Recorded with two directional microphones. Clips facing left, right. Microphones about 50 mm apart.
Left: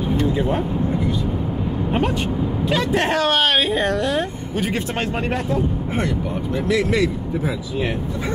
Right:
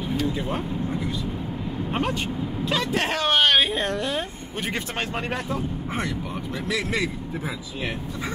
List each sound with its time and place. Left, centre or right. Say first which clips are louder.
0.3 s speech: left 7 dB; left
2.9 s speech: left 5 dB; centre
3.2 s speech: right 2 dB; centre
4.7 s speech: left 5 dB; left